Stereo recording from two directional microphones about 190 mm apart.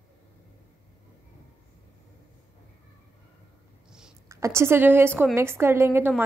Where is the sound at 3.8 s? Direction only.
5° right (ahead or behind).